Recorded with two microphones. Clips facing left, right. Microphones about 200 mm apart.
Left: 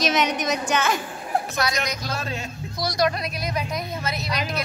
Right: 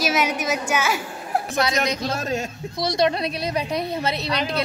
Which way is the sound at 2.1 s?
45° right (ahead or behind).